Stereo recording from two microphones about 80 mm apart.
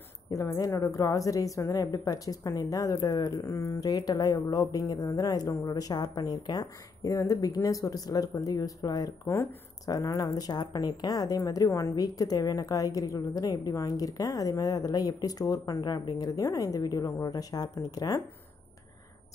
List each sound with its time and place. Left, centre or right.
0.3 s a woman's voice: left
9.2 s speech: left
9.8 s a woman's voice: left
16.4 s a woman's voice: left